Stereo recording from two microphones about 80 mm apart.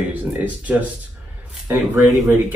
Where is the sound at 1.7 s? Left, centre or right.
Right.